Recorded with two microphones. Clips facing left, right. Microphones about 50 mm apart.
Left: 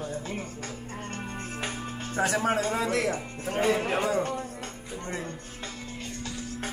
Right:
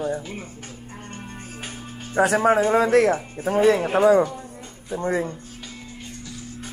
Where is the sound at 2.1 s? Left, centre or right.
Right.